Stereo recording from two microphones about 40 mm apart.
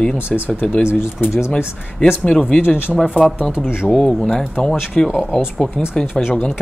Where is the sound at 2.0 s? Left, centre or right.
Left.